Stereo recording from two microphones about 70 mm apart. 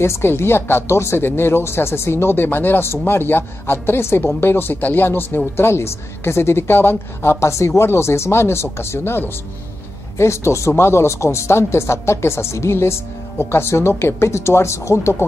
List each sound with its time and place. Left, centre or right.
0.0 s a woman's voice: left